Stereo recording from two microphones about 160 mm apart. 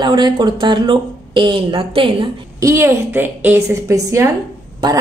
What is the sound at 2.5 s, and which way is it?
A woman's voice, 20° right (ahead or behind).